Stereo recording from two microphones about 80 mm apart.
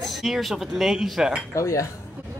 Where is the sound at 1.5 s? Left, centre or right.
Left.